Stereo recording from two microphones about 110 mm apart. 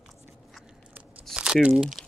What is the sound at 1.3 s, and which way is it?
Crumpling, 10° right (ahead or behind).